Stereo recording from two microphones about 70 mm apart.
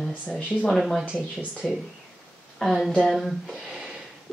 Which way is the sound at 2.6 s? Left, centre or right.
Centre.